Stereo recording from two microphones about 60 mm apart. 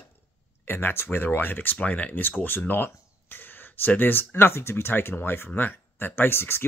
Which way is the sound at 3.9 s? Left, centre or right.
Left.